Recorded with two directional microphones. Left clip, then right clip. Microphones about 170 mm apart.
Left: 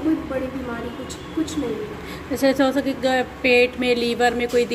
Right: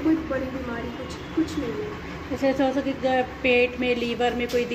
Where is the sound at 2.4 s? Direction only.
15° left (ahead or behind).